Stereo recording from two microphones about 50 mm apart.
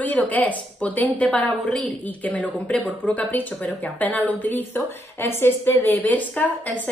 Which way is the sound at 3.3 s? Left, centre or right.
Left.